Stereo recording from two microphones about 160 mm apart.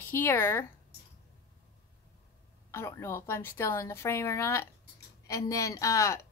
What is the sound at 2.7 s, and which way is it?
A woman's voice, 15° left (ahead or behind).